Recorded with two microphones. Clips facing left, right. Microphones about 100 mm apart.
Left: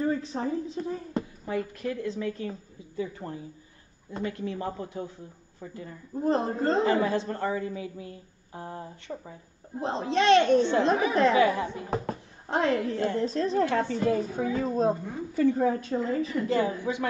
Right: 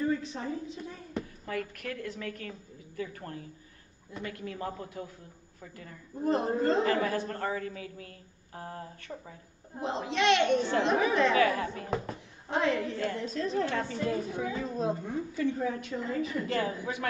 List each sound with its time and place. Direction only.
0.0 s a woman's voice: 35° left (ahead or behind)
1.4 s a woman's voice: 20° left (ahead or behind)
9.8 s a woman's voice: 35° left (ahead or behind)
11.3 s a woman's voice: 20° left (ahead or behind)
11.9 s a woman's voice: 35° left (ahead or behind); by 17.1 s 20° left (ahead or behind)